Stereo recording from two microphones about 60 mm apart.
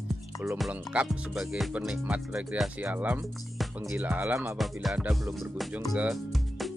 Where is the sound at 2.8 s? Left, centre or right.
Right.